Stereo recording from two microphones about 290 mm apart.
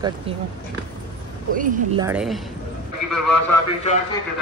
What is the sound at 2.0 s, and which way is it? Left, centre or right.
Speech, centre.